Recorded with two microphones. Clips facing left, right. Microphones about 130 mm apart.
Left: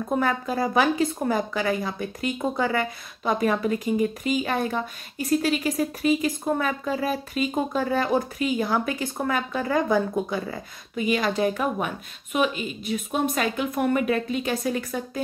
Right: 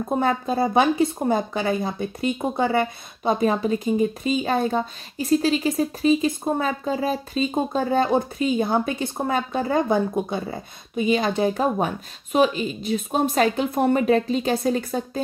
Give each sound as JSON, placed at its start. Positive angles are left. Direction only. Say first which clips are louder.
{"t": 0.1, "sound": "a woman's voice", "louder": "right 2 dB", "side_deg": -25}